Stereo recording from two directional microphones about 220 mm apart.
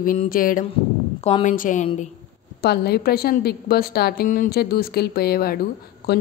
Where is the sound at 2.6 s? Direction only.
45° left (ahead or behind).